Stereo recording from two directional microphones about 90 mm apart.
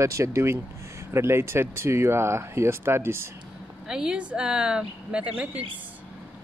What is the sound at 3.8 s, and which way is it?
Speech, 10° right (ahead or behind).